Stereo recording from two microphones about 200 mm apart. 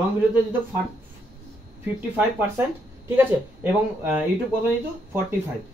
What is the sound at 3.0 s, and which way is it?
Speech, 10° right (ahead or behind).